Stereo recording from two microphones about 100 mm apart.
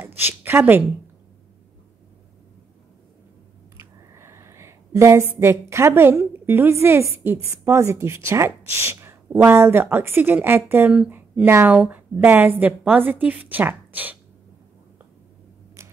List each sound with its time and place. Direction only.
0.0 s a woman's voice: 20° right (ahead or behind)
3.7 s a sound: 25° right (ahead or behind)
5.4 s speech: 25° right (ahead or behind)